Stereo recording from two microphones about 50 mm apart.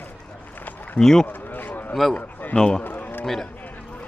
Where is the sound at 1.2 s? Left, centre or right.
Left.